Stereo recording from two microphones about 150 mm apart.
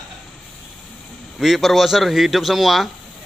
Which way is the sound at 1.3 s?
Centre (ahead or behind).